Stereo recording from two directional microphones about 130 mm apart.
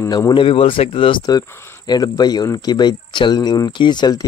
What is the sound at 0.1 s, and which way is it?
Speech, 35° left (ahead or behind).